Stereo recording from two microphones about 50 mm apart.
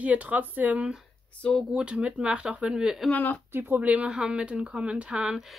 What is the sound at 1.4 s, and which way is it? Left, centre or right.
Speech, centre.